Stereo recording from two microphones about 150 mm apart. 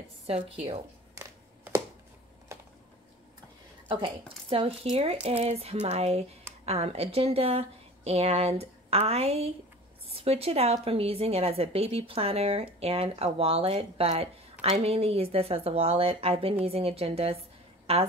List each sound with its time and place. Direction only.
0.3 s a woman's voice: 40° right (ahead or behind)
3.9 s a woman's voice: 40° right (ahead or behind)